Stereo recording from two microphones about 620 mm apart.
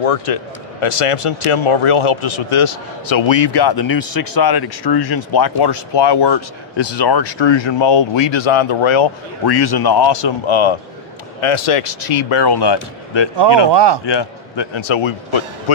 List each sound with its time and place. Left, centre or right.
0.0 s speech: left
13.7 s speech: right
14.0 s speech: left